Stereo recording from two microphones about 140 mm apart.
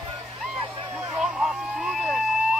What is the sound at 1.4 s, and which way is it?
Vehicle, centre (ahead or behind).